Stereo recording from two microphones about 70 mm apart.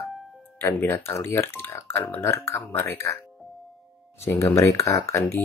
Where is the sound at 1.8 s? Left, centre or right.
Left.